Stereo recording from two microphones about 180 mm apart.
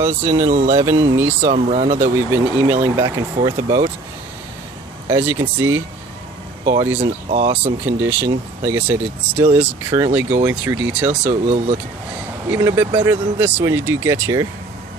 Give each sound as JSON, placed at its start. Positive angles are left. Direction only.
{"t": 0.0, "sound": "speech", "side_deg": -15}
{"t": 1.5, "sound": "speech", "side_deg": -40}
{"t": 1.9, "sound": "speech", "side_deg": -15}
{"t": 3.4, "sound": "speech", "side_deg": -25}
{"t": 5.0, "sound": "speech", "side_deg": -10}
{"t": 7.2, "sound": "speech", "side_deg": -35}
{"t": 7.5, "sound": "speech", "side_deg": -10}
{"t": 11.4, "sound": "speech", "side_deg": -40}
{"t": 12.4, "sound": "speech", "side_deg": -15}